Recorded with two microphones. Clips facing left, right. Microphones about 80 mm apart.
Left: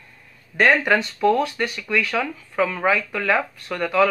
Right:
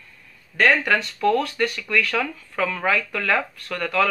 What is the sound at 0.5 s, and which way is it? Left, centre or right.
Speech, centre.